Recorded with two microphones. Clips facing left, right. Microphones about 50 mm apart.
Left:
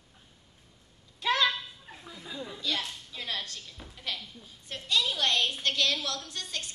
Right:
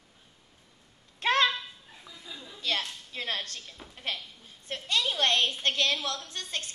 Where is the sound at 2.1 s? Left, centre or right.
Left.